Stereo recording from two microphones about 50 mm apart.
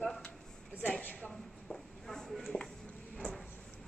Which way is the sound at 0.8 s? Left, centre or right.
Left.